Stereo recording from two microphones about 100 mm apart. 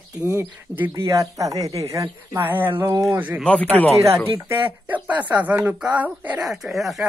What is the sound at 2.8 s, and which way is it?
Speech, 35° right (ahead or behind).